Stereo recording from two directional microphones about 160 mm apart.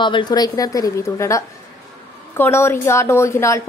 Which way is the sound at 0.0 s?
30° left (ahead or behind).